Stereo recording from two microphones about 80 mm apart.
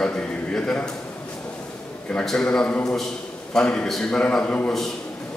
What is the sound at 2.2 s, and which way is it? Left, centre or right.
A man's voice, centre.